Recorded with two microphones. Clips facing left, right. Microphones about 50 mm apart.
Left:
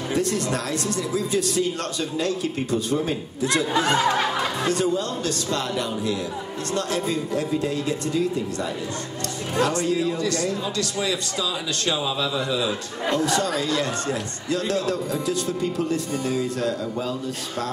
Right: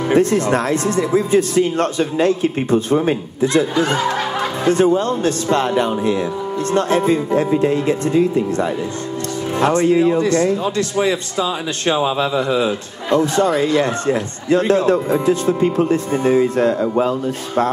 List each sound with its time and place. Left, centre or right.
0.1 s a man's voice: right